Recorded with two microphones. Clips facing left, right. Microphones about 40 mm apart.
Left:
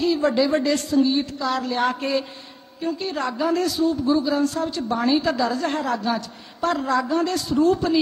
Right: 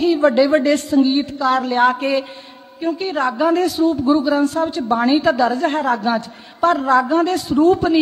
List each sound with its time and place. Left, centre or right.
0.0 s a man's voice: right